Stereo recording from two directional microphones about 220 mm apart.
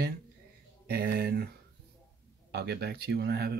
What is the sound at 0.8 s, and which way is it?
Speech, 50° right (ahead or behind).